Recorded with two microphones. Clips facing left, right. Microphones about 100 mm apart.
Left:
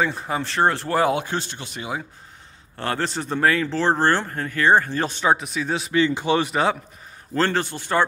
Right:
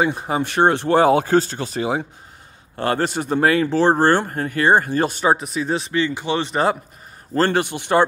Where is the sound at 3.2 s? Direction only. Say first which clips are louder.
Right 2 dB; 15° right (ahead or behind).